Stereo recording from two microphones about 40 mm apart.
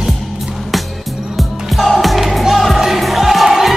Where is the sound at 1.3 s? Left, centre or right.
Centre.